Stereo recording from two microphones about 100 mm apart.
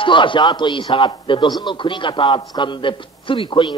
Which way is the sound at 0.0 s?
55° left (ahead or behind).